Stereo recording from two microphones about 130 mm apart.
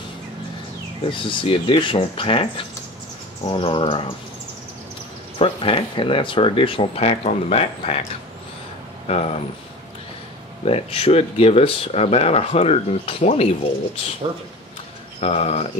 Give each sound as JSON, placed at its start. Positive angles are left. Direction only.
{"t": 1.1, "sound": "speech", "side_deg": 40}
{"t": 5.4, "sound": "speech", "side_deg": 45}
{"t": 9.0, "sound": "speech", "side_deg": 50}
{"t": 10.6, "sound": "speech", "side_deg": 50}
{"t": 15.1, "sound": "speech", "side_deg": 50}